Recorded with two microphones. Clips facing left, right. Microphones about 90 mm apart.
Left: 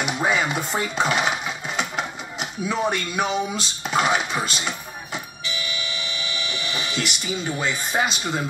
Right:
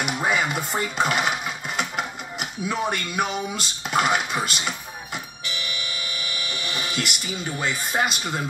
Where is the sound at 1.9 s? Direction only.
5° right (ahead or behind).